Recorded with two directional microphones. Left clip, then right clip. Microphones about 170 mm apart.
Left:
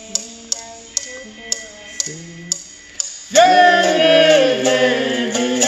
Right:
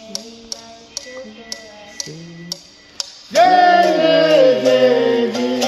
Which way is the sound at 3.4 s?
15° right (ahead or behind).